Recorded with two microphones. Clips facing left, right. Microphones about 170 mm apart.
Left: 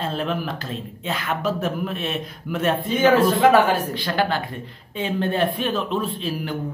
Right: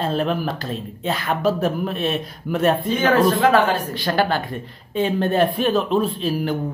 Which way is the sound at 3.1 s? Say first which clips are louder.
Even; 10° left (ahead or behind).